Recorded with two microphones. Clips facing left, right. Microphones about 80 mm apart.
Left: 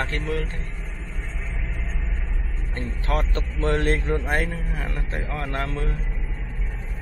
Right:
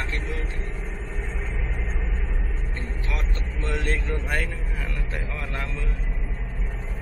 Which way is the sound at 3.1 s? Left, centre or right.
Left.